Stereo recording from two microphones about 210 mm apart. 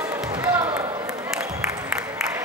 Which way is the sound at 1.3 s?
5° right (ahead or behind).